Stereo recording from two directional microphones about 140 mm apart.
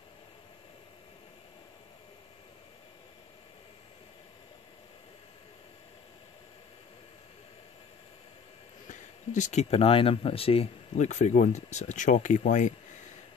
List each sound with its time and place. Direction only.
8.8 s speech: 60° left (ahead or behind)